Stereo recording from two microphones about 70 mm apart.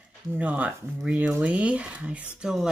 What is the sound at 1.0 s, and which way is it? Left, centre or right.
Speech, centre.